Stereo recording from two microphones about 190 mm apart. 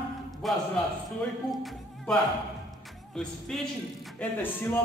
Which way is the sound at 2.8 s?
Centre (ahead or behind).